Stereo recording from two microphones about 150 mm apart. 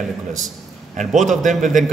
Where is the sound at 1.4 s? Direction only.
55° right (ahead or behind).